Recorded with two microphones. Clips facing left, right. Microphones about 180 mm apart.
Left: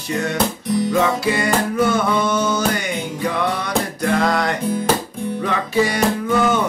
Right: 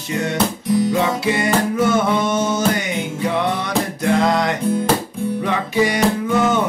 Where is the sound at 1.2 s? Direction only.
20° right (ahead or behind).